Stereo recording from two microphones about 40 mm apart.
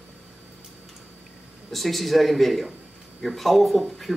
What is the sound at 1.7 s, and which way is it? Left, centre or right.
Speech, centre.